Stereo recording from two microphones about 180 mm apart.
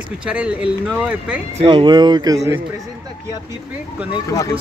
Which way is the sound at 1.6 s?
25° right (ahead or behind).